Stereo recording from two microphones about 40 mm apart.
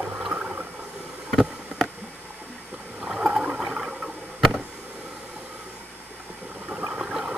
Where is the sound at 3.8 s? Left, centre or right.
Centre.